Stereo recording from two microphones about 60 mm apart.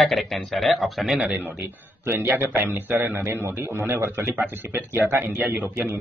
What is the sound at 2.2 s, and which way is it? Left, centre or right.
A man's voice, right.